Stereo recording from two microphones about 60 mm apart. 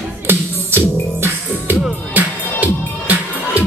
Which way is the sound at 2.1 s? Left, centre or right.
Right.